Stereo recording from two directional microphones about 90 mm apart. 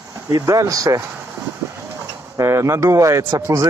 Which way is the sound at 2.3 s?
30° right (ahead or behind).